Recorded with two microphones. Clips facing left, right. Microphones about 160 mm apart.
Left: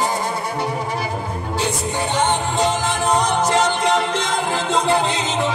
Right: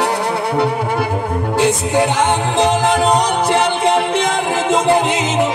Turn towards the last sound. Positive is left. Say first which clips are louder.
# right 5 dB
turn(degrees=-55)  # may be behind; listen again after turning